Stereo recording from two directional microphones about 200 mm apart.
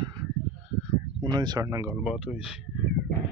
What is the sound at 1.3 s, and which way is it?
Speech, 20° right (ahead or behind).